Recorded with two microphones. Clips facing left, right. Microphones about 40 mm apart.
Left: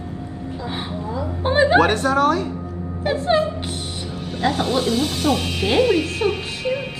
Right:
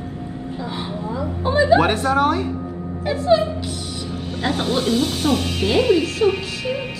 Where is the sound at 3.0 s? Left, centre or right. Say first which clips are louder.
Right 3 dB; left.